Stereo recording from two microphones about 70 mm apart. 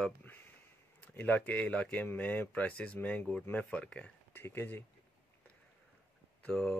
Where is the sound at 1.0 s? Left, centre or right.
Left.